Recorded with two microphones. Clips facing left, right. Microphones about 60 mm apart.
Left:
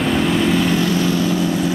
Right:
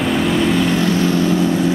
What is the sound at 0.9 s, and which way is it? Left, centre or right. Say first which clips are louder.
Vehicle: right 2 dB; right.